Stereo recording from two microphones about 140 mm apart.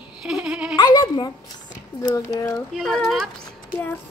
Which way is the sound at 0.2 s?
5° right (ahead or behind).